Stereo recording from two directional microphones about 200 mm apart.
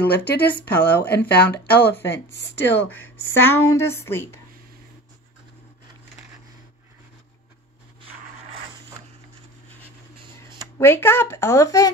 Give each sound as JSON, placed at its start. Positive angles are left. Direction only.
{"t": 0.0, "sound": "speech", "side_deg": 50}
{"t": 0.7, "sound": "a woman's voice", "side_deg": 10}
{"t": 2.0, "sound": "speech", "side_deg": 60}
{"t": 2.9, "sound": "a woman's voice", "side_deg": 10}
{"t": 10.8, "sound": "a woman's voice", "side_deg": 10}